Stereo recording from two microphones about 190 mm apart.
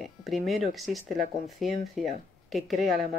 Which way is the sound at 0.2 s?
Centre (ahead or behind).